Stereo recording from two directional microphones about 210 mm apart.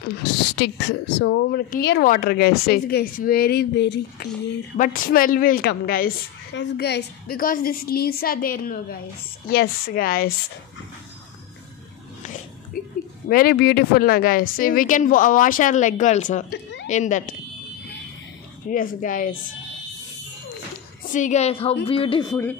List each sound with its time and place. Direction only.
0.6 s a woman's voice: 50° left (ahead or behind)
4.7 s a woman's voice: 40° left (ahead or behind)
12.7 s oink: 45° left (ahead or behind)
13.3 s a woman's voice: 45° left (ahead or behind)
18.7 s speech: 40° left (ahead or behind)
21.1 s speech: 35° left (ahead or behind)
22.3 s speech: 10° left (ahead or behind)